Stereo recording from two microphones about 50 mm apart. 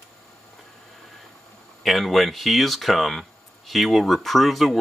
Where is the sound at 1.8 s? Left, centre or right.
Centre.